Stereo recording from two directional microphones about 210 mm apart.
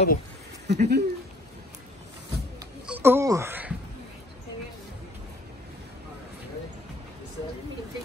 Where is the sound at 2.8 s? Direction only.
10° right (ahead or behind).